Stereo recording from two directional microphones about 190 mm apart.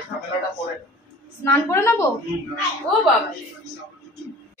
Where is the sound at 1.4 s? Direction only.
15° left (ahead or behind).